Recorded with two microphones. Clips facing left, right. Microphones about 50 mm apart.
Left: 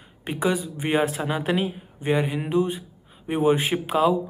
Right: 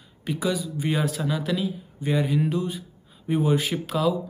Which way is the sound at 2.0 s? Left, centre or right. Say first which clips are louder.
Even; left.